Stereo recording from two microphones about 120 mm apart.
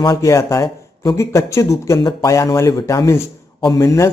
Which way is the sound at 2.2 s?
25° left (ahead or behind).